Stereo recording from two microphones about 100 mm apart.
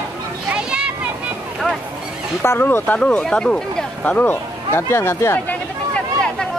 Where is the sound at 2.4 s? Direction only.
25° left (ahead or behind).